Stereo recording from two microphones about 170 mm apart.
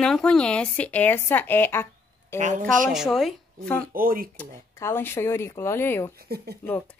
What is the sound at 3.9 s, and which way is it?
Speech, 55° right (ahead or behind).